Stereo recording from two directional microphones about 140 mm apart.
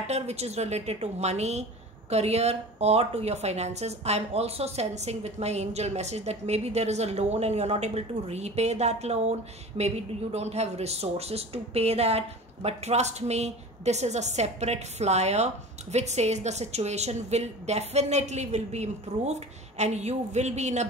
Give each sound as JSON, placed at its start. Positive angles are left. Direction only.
{"t": 0.0, "sound": "speech", "side_deg": -50}